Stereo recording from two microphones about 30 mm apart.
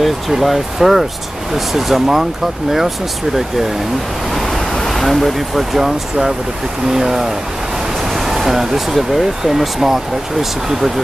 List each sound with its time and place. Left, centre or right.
0.4 s speech: centre
4.3 s waves: centre
4.8 s speech: centre